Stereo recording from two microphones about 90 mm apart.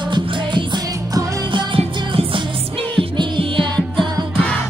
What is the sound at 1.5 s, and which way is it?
Music, 65° right (ahead or behind).